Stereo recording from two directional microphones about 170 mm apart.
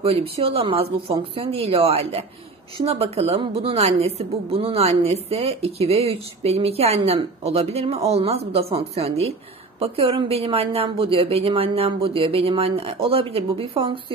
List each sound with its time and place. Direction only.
0.0 s a woman's voice: 35° right (ahead or behind)